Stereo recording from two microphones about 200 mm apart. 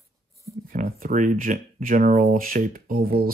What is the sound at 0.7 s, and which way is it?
Speech, 45° right (ahead or behind).